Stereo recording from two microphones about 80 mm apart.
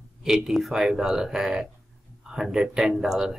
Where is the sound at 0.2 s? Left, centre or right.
Centre.